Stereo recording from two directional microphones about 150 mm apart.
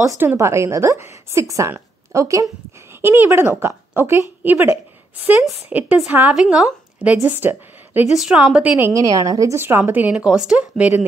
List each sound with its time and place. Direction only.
0.2 s a woman's voice: 15° right (ahead or behind)